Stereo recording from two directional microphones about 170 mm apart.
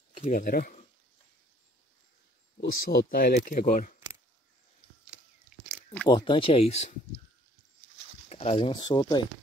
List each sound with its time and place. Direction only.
0.2 s speech: 50° left (ahead or behind)
2.6 s speech: 70° left (ahead or behind)
3.3 s speech: 55° left (ahead or behind)
5.5 s biting: 5° right (ahead or behind)
6.0 s speech: 25° left (ahead or behind)
8.3 s speech: 35° left (ahead or behind)